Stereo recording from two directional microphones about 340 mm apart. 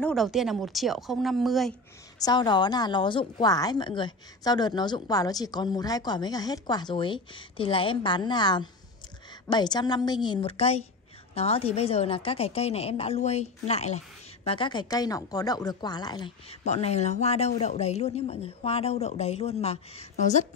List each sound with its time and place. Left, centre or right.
0.0 s speech: centre
2.1 s a woman's voice: centre